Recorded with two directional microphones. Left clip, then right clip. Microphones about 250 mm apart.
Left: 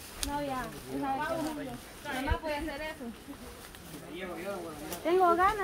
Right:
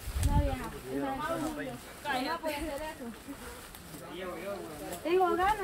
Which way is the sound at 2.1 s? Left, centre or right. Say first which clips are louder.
Right 4 dB; centre.